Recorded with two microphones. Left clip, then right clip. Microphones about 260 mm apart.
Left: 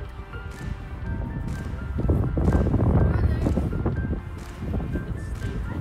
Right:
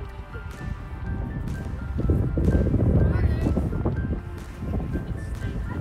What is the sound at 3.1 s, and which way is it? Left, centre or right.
Music, right.